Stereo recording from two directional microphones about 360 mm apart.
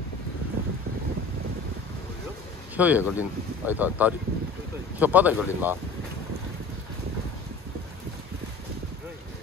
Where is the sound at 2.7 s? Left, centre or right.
Centre.